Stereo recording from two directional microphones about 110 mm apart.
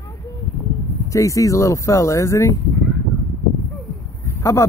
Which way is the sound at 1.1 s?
30° left (ahead or behind).